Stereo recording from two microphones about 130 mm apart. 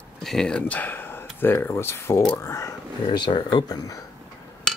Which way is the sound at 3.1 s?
35° left (ahead or behind).